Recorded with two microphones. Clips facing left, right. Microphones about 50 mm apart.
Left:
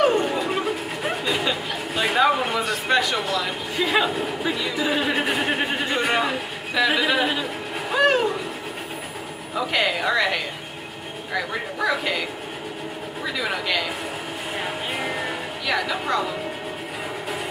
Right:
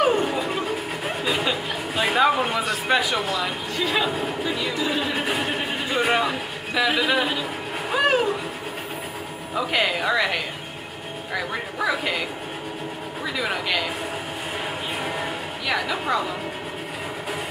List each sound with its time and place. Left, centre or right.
0.0 s music: centre
0.6 s a sound: centre
3.7 s speech: centre
4.7 s speech: centre
7.9 s a sound: centre
9.6 s speech: centre
14.6 s music: centre